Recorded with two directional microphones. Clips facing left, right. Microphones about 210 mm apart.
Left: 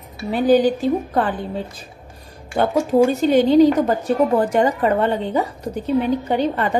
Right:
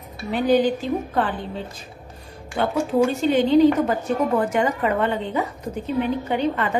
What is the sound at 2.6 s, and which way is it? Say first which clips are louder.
A woman's voice: left 4 dB; 45° left (ahead or behind).